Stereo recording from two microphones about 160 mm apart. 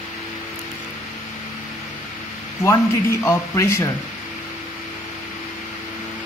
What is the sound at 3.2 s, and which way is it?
Speech, 20° left (ahead or behind).